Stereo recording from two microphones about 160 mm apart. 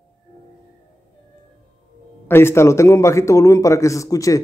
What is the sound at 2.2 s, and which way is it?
A man's voice, 15° left (ahead or behind).